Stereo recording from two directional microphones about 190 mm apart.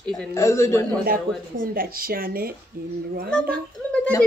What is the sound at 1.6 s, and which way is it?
Speech, 50° right (ahead or behind).